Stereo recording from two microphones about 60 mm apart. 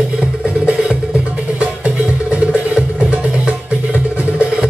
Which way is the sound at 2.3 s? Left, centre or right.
Right.